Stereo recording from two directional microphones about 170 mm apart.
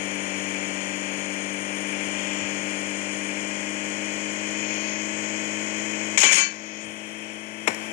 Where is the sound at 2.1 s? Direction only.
55° left (ahead or behind).